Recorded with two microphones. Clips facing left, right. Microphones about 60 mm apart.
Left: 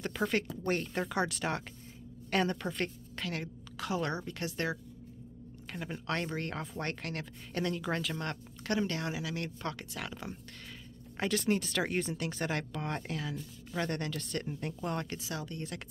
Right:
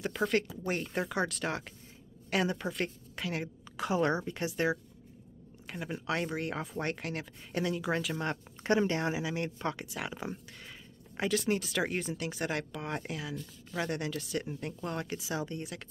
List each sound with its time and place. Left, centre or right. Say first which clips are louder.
0.0 s speech: right 2 dB; centre
11.1 s speech: even; centre
15.0 s speech: right 4 dB; centre